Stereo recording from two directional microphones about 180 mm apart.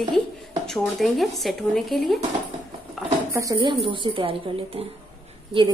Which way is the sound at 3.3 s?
20° right (ahead or behind).